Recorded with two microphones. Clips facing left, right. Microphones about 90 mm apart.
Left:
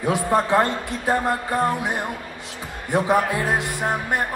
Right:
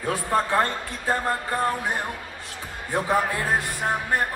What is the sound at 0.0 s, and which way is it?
Speech, 20° left (ahead or behind).